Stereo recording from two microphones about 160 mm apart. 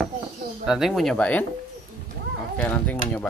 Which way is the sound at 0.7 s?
Centre (ahead or behind).